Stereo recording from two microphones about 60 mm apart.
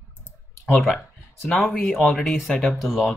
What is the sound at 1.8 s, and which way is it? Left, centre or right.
Speech, centre.